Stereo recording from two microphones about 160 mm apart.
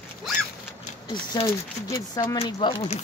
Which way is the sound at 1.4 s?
20° left (ahead or behind).